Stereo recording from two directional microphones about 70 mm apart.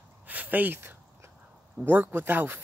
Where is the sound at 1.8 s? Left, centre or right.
Right.